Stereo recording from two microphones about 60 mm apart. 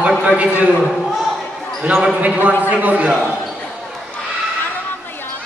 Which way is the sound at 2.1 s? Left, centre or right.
Right.